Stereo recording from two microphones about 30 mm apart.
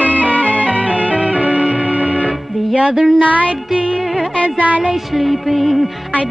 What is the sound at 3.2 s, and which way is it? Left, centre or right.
Music, right.